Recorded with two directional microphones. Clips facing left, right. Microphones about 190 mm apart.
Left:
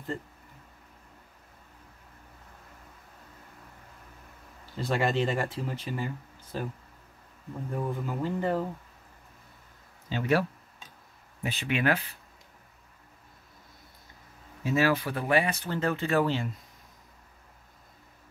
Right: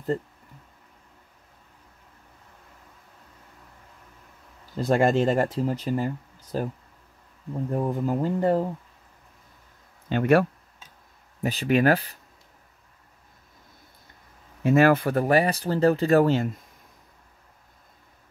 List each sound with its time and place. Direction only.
4.7 s speech: 45° right (ahead or behind)
7.7 s speech: 40° right (ahead or behind)
10.0 s speech: 55° right (ahead or behind)
11.4 s speech: 40° right (ahead or behind)
14.6 s speech: 55° right (ahead or behind)